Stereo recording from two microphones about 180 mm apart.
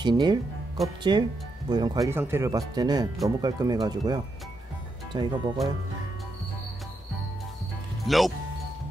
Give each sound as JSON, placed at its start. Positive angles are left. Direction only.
{"t": 0.0, "sound": "speech", "side_deg": -25}
{"t": 8.0, "sound": "speech", "side_deg": 0}